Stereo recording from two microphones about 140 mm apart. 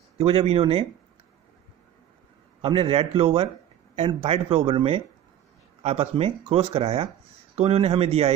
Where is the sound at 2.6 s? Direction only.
40° right (ahead or behind).